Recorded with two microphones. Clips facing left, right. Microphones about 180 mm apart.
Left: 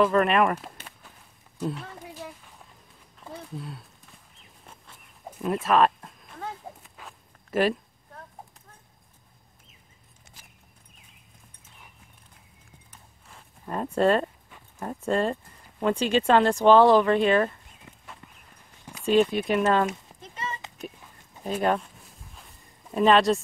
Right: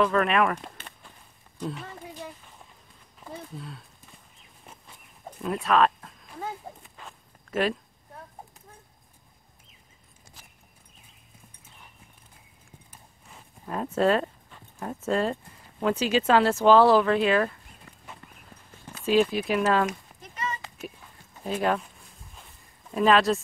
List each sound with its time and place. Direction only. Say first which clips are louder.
0.0 s speech: left 2 dB; 5° left (ahead or behind)
1.6 s a sound: left 3 dB; centre (ahead or behind)
5.4 s speech: left 1 dB; centre (ahead or behind)
6.3 s walk: right 1 dB; 5° right (ahead or behind)
12.9 s clip-clop: even; centre (ahead or behind)
13.9 s speech: left 1 dB; centre (ahead or behind)
14.5 s dog: left 1 dB; 10° left (ahead or behind)
15.0 s speech: left 1 dB; centre (ahead or behind)
19.0 s speech: left 1 dB; 5° right (ahead or behind)
19.9 s a sound: left 1 dB; 25° left (ahead or behind)
21.5 s speech: left 1 dB; centre (ahead or behind)
22.3 s a sound: even; centre (ahead or behind)